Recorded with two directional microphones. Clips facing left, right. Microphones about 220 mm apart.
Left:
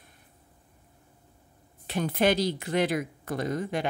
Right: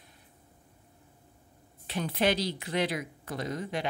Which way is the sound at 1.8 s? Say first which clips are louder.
Left 3 dB; 50° left (ahead or behind).